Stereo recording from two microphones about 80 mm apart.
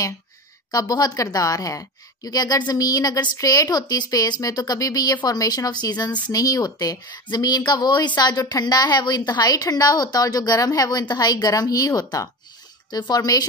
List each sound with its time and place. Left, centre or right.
0.7 s a woman's voice: left
3.6 s a woman's voice: left